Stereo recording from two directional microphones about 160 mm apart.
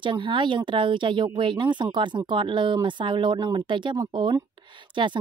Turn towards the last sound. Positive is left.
turn(degrees=-30)  # may be behind; listen again after turning